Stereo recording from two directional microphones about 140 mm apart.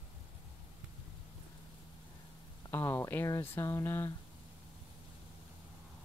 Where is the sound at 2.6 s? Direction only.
15° left (ahead or behind).